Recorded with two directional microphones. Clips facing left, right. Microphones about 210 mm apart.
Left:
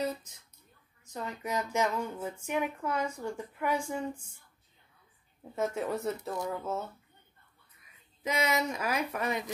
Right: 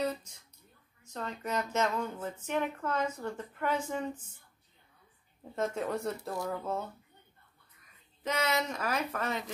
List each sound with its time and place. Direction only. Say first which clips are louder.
1.1 s speech: even; 10° left (ahead or behind)
5.6 s speech: left 1 dB; 5° left (ahead or behind)
8.2 s speech: left 1 dB; 10° left (ahead or behind)